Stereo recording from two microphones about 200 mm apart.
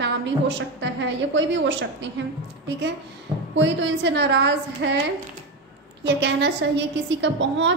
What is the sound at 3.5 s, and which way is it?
A woman's voice, 65° right (ahead or behind).